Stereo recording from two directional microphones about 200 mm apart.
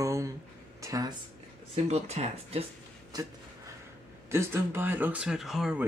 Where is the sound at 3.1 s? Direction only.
20° right (ahead or behind).